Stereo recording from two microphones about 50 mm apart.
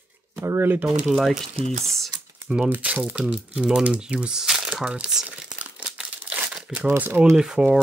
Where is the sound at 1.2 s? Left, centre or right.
Centre.